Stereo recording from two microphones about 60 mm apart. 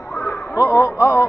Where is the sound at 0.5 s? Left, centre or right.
Left.